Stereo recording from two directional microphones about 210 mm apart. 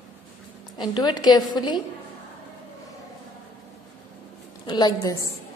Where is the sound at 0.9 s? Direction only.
20° left (ahead or behind).